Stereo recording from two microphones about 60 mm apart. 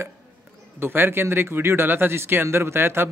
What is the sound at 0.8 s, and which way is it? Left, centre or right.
Speech, right.